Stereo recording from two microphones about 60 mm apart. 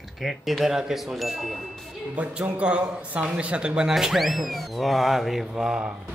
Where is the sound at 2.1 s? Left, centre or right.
Right.